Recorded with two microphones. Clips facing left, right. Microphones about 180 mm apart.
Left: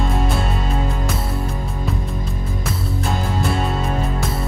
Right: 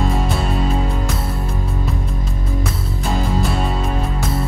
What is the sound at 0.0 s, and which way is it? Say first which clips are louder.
Music: right 1 dB; centre (ahead or behind).